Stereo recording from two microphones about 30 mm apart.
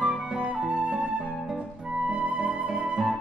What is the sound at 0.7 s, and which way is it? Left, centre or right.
Flute, right.